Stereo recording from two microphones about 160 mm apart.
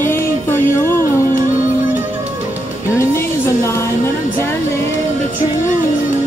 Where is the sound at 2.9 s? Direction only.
15° left (ahead or behind).